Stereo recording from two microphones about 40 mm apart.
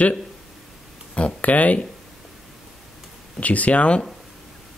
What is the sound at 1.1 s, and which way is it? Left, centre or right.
Speech, left.